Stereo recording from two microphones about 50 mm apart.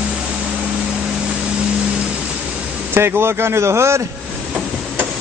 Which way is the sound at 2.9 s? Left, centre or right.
Right.